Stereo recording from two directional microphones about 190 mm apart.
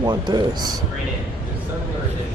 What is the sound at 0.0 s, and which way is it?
Speech, 20° right (ahead or behind).